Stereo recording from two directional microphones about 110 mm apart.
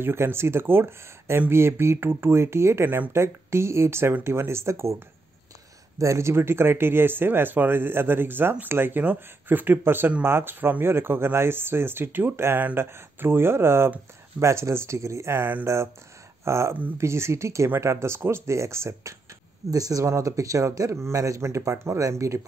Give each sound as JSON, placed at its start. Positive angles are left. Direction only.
{"t": 0.0, "sound": "speech", "side_deg": -20}